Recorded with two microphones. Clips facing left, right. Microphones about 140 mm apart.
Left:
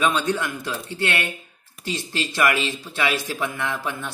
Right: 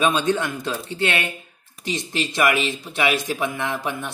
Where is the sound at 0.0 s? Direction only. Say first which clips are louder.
Right 2 dB; 20° right (ahead or behind).